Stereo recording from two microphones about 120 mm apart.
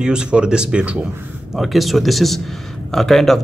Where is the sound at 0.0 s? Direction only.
5° right (ahead or behind).